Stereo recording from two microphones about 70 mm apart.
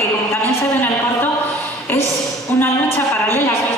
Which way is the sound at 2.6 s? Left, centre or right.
Left.